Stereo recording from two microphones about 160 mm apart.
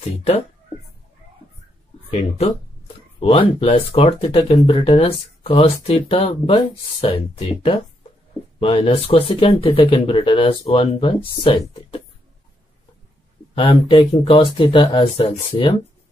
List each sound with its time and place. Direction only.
2.0 s speech: 40° left (ahead or behind)
13.6 s speech: 35° left (ahead or behind)